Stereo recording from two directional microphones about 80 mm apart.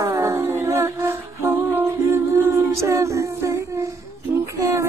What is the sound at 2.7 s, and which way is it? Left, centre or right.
Music, right.